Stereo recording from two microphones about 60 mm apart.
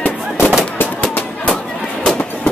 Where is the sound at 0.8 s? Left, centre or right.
Left.